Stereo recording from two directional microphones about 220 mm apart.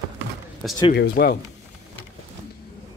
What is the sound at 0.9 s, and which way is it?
Speech, 45° left (ahead or behind).